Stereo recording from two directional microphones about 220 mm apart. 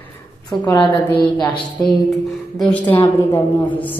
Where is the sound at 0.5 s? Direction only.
15° left (ahead or behind).